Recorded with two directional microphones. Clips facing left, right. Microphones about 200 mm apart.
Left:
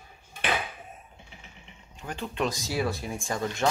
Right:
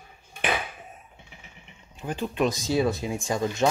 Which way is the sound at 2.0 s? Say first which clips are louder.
Right 5 dB; 15° right (ahead or behind).